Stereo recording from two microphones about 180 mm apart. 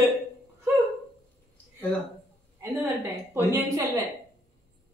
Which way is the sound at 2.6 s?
15° right (ahead or behind).